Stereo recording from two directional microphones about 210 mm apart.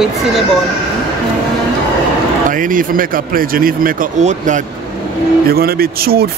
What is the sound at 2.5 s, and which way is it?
Speech, 40° right (ahead or behind).